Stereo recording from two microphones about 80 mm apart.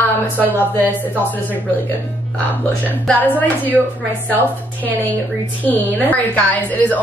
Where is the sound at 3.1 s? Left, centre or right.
Left.